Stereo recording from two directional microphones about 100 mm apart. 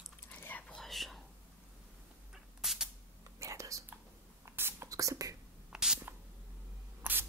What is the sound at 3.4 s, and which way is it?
Whispering, 30° right (ahead or behind).